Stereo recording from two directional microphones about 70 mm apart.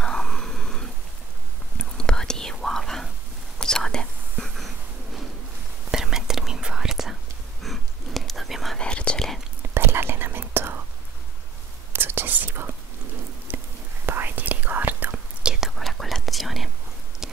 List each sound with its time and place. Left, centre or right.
0.0 s a sound: centre
1.8 s whispering: centre
4.6 s a sound: centre
5.9 s whispering: centre
8.7 s whispering: centre
9.8 s whispering: right
11.9 s whispering: right
13.5 s a sound: right
14.0 s whispering: right
15.4 s whispering: centre
15.7 s whispering: centre